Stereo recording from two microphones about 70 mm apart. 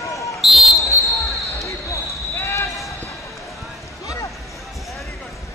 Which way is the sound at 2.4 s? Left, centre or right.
Left.